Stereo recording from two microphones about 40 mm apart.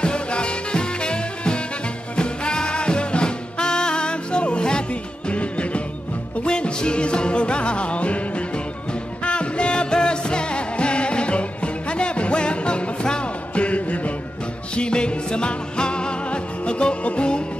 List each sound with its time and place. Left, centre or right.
0.0 s music: left
13.7 s music: left
14.8 s music: left